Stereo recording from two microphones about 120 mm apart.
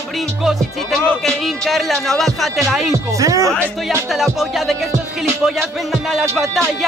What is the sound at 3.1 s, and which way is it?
Speech, 25° right (ahead or behind).